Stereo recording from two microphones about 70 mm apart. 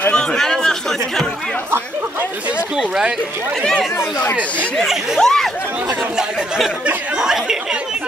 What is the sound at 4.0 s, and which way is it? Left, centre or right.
Speech, left.